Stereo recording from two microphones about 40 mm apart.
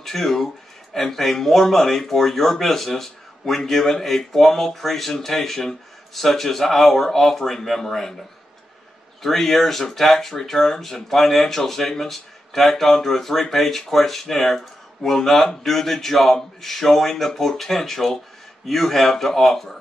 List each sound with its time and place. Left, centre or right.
0.0 s speech: centre
9.2 s speech: centre